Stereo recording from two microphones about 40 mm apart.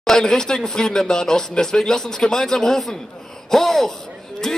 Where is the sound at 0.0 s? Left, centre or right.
Centre.